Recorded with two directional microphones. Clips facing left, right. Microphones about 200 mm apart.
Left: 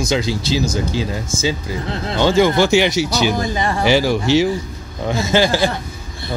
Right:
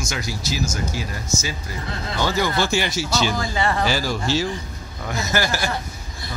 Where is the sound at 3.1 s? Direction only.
15° left (ahead or behind).